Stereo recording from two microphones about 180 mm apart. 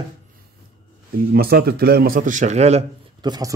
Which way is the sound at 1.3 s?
60° right (ahead or behind).